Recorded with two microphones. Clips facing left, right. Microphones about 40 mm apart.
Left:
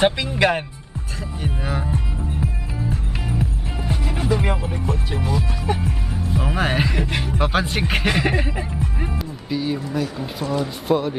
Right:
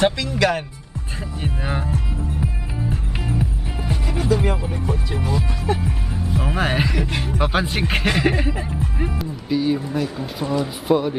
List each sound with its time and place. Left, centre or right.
0.0 s speech: left
1.4 s speech: centre
2.4 s music: centre
3.9 s music: centre
4.3 s speech: centre
4.8 s speech: centre